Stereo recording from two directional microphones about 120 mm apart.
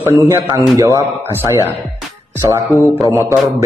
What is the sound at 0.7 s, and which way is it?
Speech, 25° right (ahead or behind).